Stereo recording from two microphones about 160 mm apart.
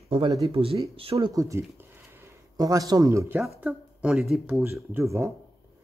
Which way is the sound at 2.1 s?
20° right (ahead or behind).